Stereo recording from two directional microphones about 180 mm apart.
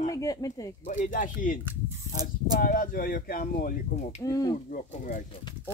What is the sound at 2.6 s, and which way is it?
Speech, 50° left (ahead or behind).